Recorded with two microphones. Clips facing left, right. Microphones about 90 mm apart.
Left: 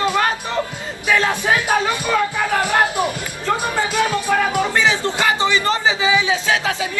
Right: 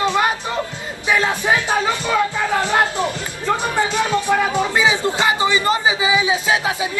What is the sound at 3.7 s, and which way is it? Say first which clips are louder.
Music: right 1 dB; 20° right (ahead or behind).